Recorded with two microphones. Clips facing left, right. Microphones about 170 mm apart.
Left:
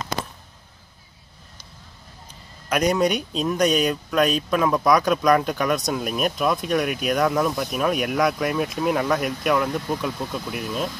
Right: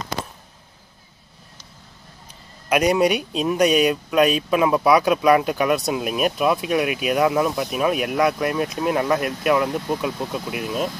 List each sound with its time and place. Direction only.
2.7 s speech: 10° right (ahead or behind)